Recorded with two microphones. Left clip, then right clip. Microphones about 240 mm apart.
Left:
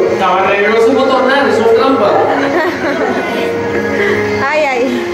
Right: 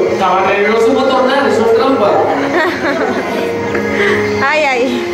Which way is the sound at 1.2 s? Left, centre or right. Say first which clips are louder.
Left 1 dB; centre.